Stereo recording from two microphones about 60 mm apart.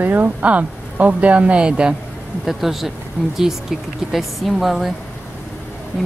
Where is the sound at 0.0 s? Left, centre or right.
Right; by 2.0 s centre.